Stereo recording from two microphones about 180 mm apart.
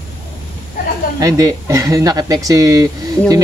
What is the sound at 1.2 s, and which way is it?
Speech, 20° right (ahead or behind).